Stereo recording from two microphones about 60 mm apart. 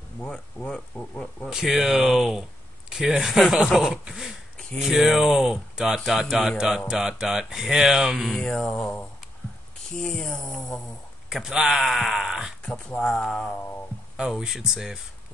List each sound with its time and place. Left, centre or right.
0.6 s speech: left
0.9 s speech: left
1.5 s speech: centre
8.5 s speech: centre
8.7 s speech: left
9.9 s speech: centre
11.2 s a man's voice: centre
12.6 s speech: centre
14.1 s speech: centre